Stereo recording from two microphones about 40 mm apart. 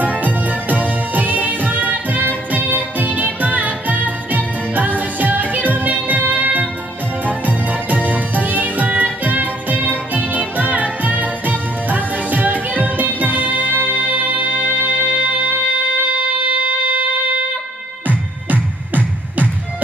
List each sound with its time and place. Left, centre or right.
0.0 s music: right
18.0 s music: right